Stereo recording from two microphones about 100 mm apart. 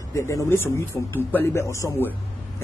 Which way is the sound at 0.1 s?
30° left (ahead or behind).